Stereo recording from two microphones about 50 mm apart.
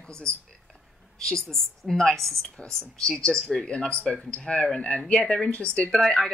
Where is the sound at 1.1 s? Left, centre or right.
Centre.